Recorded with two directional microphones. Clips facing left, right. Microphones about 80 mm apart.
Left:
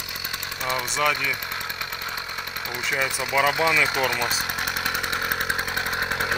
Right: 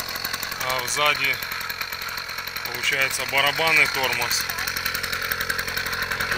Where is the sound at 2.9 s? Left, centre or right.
Left.